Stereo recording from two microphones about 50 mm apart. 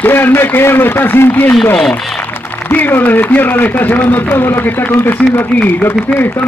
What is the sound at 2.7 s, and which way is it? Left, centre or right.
A man's voice, left.